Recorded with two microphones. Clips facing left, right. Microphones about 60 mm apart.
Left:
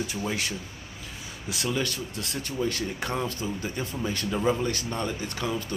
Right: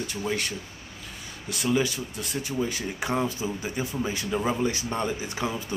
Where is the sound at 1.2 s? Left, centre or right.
Centre.